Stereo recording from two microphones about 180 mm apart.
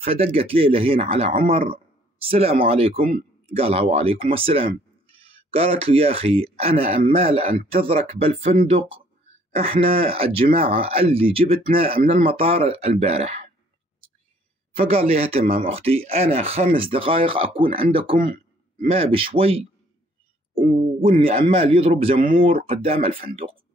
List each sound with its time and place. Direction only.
0.0 s speech: 30° right (ahead or behind)
9.6 s speech: 30° right (ahead or behind)
14.8 s speech: 35° right (ahead or behind)
15.4 s speech: 50° right (ahead or behind)
15.7 s a man's voice: 35° right (ahead or behind)
21.0 s speech: 30° right (ahead or behind)
22.4 s speech: 50° right (ahead or behind)
22.7 s speech: 30° right (ahead or behind)